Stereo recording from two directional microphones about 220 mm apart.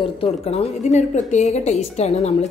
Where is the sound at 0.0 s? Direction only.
25° left (ahead or behind).